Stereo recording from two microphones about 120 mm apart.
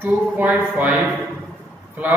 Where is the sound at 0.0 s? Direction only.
15° right (ahead or behind).